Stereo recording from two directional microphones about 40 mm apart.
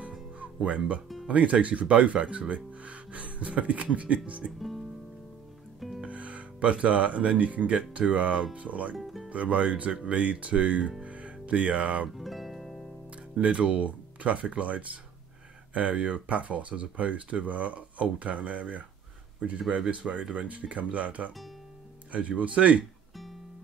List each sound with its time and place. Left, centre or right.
0.4 s speech: right
4.5 s music: centre
6.0 s speech: right
8.9 s speech: centre
9.3 s speech: right
12.2 s music: centre
13.1 s speech: right
19.9 s speech: right
22.4 s speech: right